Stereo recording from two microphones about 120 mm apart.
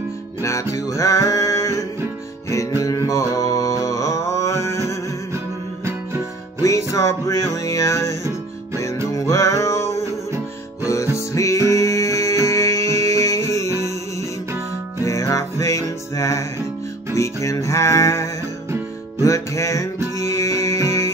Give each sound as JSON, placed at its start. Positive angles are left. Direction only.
{"t": 0.4, "sound": "music", "side_deg": 25}
{"t": 6.6, "sound": "music", "side_deg": 25}
{"t": 15.0, "sound": "music", "side_deg": 25}